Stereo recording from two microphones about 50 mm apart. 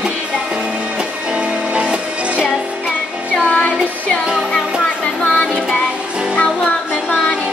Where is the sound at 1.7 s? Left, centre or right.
Right.